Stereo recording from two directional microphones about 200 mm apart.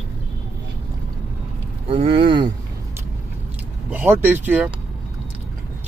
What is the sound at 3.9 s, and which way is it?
Speech, 10° right (ahead or behind).